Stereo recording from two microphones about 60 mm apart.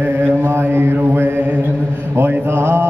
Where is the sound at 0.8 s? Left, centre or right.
Right.